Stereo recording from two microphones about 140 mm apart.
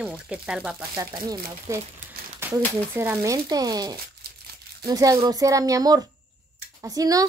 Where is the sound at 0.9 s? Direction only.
25° right (ahead or behind).